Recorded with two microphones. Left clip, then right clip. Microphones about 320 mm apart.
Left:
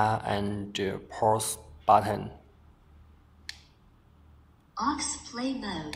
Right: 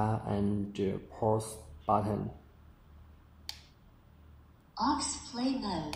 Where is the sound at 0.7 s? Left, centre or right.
Left.